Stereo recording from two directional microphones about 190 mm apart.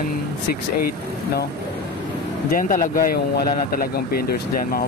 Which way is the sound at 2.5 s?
45° left (ahead or behind).